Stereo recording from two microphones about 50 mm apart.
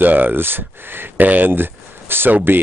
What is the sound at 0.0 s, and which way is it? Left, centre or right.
Speech, right.